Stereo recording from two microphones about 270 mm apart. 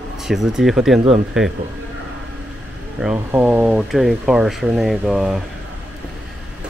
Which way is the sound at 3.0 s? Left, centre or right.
Centre.